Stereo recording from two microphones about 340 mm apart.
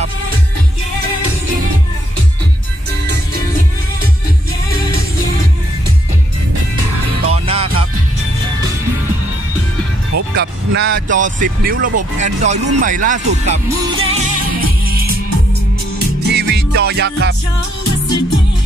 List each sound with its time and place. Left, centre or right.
7.2 s music: centre
10.3 s speech: right
16.3 s music: right